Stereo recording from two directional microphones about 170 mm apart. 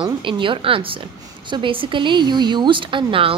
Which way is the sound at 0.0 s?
30° right (ahead or behind).